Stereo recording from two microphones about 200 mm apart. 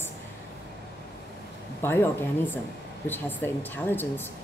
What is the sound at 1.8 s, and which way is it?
Speech, 10° left (ahead or behind).